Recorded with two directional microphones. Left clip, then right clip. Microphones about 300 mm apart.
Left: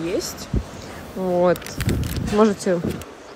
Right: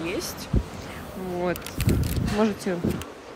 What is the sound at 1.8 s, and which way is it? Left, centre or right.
Speech, centre.